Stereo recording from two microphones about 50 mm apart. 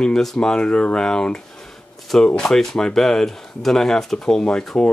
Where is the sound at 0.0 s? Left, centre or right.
Centre.